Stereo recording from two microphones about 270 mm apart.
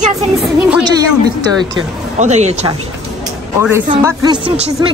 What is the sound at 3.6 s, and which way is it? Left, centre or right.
Speech, centre.